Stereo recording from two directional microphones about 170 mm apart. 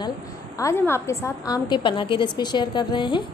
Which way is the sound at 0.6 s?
15° left (ahead or behind).